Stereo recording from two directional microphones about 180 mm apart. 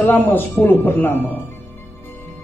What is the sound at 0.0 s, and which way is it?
Speech, 10° left (ahead or behind).